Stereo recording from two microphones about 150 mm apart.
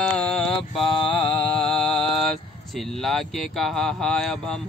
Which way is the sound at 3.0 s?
Centre (ahead or behind).